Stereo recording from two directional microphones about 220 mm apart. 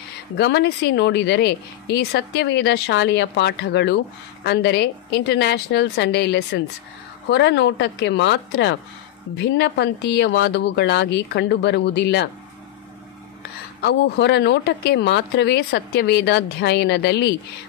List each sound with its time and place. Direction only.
0.4 s a woman's voice: 50° left (ahead or behind)
13.4 s a woman's voice: 45° left (ahead or behind)